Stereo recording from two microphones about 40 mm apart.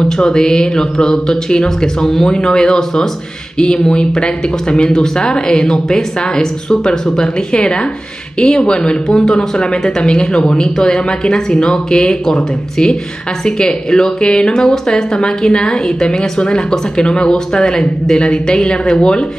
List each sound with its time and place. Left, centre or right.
0.0 s speech: centre
13.4 s speech: centre